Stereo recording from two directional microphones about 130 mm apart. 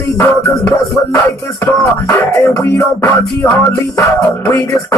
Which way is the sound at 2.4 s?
20° left (ahead or behind).